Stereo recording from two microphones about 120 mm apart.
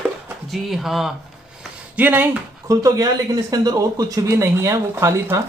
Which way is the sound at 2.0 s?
15° right (ahead or behind).